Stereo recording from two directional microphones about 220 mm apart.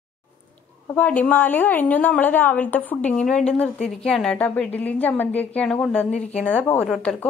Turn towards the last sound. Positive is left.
turn(degrees=5)  # may be behind; listen again after turning